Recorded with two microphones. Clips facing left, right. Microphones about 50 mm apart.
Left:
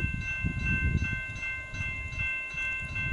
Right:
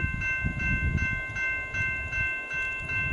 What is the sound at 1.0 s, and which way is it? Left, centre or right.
Train, right.